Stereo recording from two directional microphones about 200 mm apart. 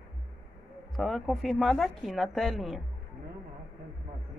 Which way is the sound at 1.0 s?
Centre (ahead or behind).